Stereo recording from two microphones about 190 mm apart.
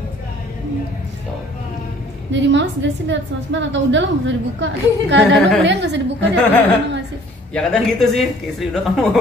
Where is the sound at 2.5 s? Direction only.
70° right (ahead or behind).